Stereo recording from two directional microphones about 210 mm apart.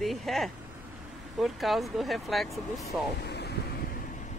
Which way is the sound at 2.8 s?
50° left (ahead or behind).